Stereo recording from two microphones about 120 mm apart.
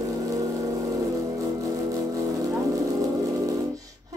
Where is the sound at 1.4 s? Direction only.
30° right (ahead or behind).